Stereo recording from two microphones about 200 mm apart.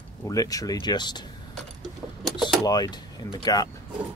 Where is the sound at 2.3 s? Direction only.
20° left (ahead or behind).